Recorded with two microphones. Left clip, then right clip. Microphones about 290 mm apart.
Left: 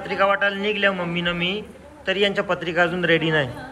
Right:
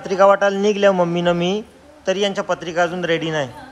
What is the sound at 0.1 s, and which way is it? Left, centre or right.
A man's voice, centre.